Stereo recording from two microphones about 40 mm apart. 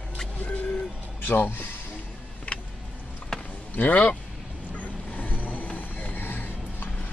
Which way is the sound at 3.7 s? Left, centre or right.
Left.